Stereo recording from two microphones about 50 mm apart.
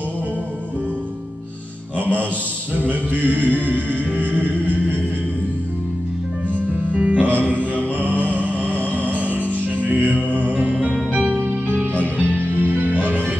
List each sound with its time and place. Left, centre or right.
2.8 s music: right
6.5 s music: right
8.6 s music: left
10.3 s music: right
11.3 s music: right